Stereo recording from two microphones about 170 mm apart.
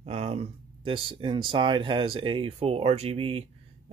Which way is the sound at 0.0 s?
35° right (ahead or behind).